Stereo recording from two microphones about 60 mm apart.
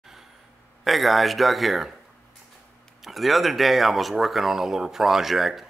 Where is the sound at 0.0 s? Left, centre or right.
Centre.